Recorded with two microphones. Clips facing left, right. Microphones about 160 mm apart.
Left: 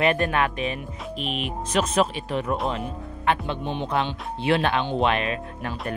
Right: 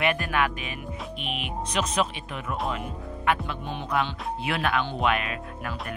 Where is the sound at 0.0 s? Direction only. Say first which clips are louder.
Left 4 dB; 35° left (ahead or behind); by 2.2 s 50° left (ahead or behind).